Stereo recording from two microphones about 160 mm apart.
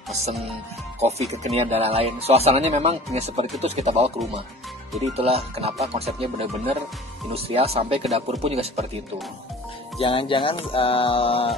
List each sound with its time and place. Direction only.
0.9 s speech: 40° right (ahead or behind)
5.1 s speech: 40° right (ahead or behind)
9.9 s music: 35° left (ahead or behind)